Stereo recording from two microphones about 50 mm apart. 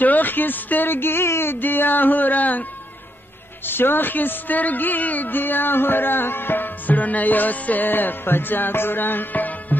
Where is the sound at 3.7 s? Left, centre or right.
Left.